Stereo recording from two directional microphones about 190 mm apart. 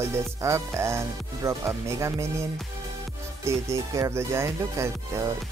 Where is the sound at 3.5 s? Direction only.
15° right (ahead or behind).